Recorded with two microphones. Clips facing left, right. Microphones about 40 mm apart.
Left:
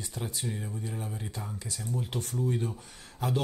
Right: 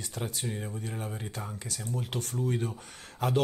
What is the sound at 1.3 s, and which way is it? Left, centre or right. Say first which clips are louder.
Speech: right 1 dB; right.